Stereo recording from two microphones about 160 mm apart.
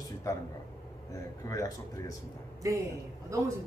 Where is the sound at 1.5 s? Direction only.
20° left (ahead or behind).